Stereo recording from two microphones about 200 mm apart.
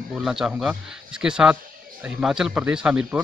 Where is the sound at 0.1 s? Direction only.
5° right (ahead or behind).